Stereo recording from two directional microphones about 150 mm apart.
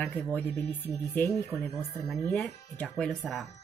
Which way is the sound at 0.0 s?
15° left (ahead or behind).